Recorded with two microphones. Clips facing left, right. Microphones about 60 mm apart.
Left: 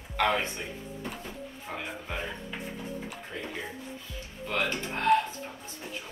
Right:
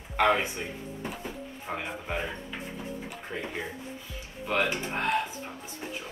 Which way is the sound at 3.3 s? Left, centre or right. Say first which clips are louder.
Right 3 dB; right.